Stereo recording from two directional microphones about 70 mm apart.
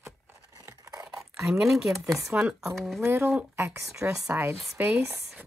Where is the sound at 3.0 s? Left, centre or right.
Right.